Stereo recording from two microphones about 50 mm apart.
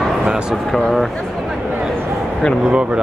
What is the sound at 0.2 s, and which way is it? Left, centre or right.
Speech, centre.